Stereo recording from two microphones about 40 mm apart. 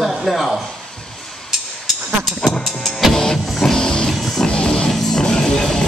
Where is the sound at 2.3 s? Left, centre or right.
Centre.